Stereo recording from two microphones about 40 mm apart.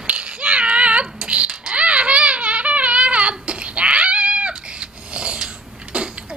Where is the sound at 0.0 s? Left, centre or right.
Right.